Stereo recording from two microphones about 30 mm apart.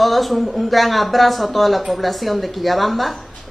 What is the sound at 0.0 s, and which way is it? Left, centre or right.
Speech, centre.